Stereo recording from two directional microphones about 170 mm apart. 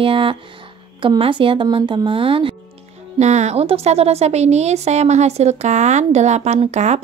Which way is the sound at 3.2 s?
40° right (ahead or behind).